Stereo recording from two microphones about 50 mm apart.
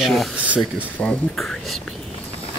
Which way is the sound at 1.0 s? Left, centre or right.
Left.